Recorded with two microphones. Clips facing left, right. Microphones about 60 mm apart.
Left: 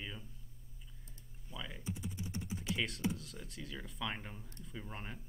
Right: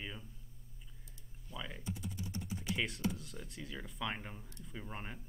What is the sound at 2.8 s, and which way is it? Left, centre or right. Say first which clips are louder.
Speech: even; centre.